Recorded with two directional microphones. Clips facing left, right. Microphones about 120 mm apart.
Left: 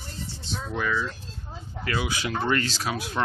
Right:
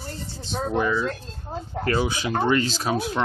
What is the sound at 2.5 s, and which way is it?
Speech, 15° right (ahead or behind).